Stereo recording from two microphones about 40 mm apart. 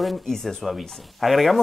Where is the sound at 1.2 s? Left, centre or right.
Centre.